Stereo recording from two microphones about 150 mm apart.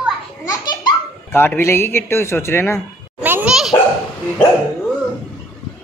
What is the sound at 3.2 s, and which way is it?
Dog, 10° right (ahead or behind).